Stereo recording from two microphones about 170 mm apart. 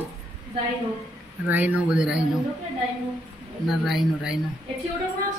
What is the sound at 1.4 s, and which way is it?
Speech, 10° right (ahead or behind).